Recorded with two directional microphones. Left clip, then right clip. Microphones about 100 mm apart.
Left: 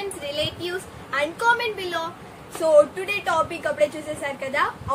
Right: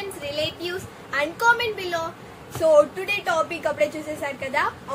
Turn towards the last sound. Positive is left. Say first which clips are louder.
# even
turn(degrees=5)  # may be behind; listen again after turning